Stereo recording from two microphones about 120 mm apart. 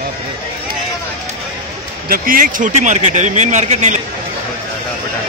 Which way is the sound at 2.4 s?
85° right.